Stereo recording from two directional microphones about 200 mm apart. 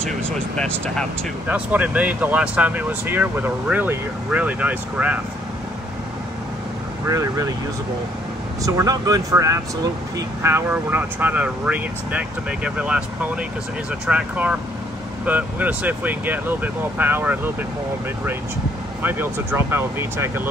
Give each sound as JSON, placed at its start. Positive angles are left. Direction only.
{"t": 0.6, "sound": "speech", "side_deg": 5}
{"t": 1.5, "sound": "speech", "side_deg": -5}
{"t": 7.1, "sound": "speech", "side_deg": -15}
{"t": 8.6, "sound": "speech", "side_deg": -15}
{"t": 19.0, "sound": "speech", "side_deg": -10}